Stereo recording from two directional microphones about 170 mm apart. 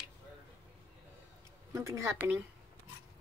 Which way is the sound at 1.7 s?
20° right (ahead or behind).